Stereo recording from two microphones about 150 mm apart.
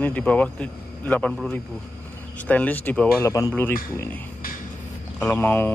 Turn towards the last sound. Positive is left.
turn(degrees=15)  # may be behind; listen again after turning